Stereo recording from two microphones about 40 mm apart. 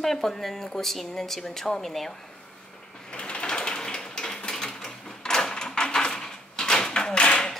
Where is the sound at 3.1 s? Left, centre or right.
Left.